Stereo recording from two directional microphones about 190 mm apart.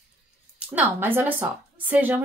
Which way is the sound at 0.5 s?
10° right (ahead or behind).